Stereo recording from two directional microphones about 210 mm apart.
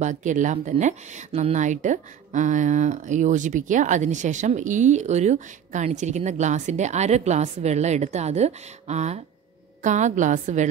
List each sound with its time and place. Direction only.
0.0 s speech: 35° right (ahead or behind)